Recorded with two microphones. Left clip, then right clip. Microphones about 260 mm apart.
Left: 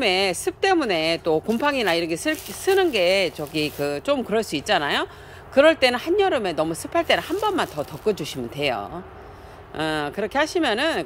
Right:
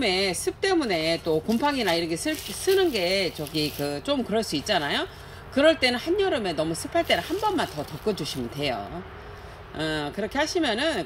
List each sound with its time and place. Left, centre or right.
0.0 s speech: centre
1.2 s speech: left
1.6 s speech: centre
9.8 s speech: centre